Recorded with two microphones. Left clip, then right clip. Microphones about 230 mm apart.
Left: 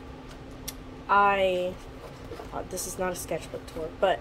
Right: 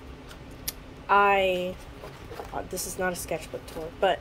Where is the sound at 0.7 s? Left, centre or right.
Centre.